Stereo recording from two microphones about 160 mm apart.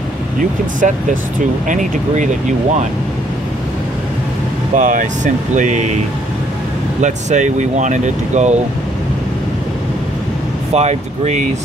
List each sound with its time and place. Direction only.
0.4 s speech: 55° right (ahead or behind)
4.7 s speech: 50° right (ahead or behind)
7.0 s speech: 50° right (ahead or behind)
10.7 s speech: 45° right (ahead or behind)